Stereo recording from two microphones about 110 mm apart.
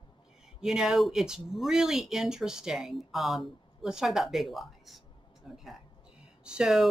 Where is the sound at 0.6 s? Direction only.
5° right (ahead or behind).